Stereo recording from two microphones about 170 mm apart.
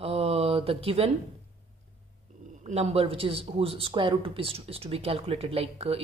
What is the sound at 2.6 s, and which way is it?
Speech, 40° right (ahead or behind).